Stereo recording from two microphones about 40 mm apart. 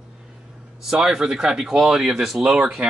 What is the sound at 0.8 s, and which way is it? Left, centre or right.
A man's voice, centre.